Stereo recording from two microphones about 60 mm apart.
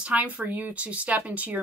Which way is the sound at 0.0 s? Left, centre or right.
Right.